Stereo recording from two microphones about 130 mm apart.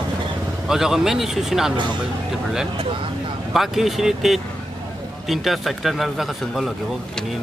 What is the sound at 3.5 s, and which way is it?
A man's voice, centre (ahead or behind).